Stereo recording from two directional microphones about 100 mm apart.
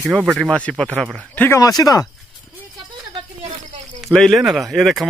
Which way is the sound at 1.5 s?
35° left (ahead or behind).